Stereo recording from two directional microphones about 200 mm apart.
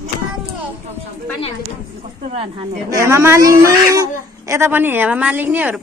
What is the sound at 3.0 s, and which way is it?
Speech, 15° right (ahead or behind).